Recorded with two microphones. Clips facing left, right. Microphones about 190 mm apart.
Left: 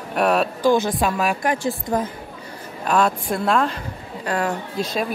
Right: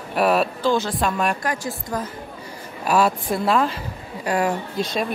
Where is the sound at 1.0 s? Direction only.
5° left (ahead or behind).